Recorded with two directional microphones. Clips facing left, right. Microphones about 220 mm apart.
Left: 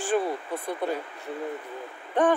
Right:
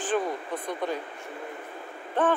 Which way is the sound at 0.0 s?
10° left (ahead or behind).